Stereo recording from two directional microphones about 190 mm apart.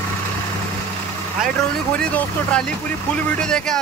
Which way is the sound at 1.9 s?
5° left (ahead or behind).